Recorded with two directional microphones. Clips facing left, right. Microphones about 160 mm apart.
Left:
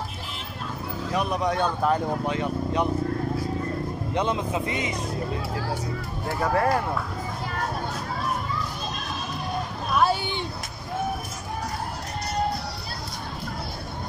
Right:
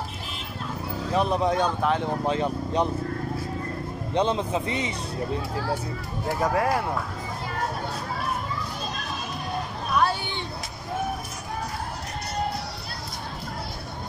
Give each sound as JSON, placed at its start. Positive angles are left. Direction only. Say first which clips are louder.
{"t": 1.1, "sound": "speech", "louder": "right 2 dB", "side_deg": -30}
{"t": 1.6, "sound": "speech", "louder": "even", "side_deg": 5}
{"t": 2.2, "sound": "speech", "louder": "right 1 dB", "side_deg": -30}
{"t": 4.1, "sound": "speech", "louder": "right 3 dB", "side_deg": -30}
{"t": 6.4, "sound": "speech", "louder": "left 1 dB", "side_deg": -15}